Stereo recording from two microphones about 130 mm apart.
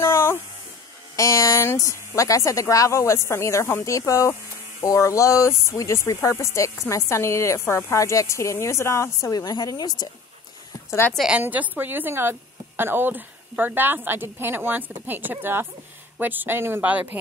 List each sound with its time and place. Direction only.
0.0 s a sound: 20° left (ahead or behind)
1.1 s speech: 25° left (ahead or behind)
10.9 s a woman's voice: 15° left (ahead or behind)
11.1 s a woman's voice: 5° right (ahead or behind)